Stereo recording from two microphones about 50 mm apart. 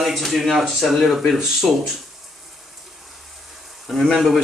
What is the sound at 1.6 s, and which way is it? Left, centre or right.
Speech, centre.